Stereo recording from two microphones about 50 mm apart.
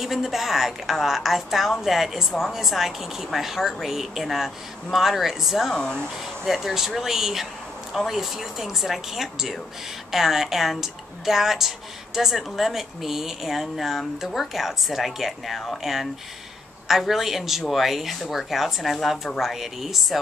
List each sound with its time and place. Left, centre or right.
0.0 s a woman's voice: centre
5.7 s speech: centre
6.4 s a woman's voice: centre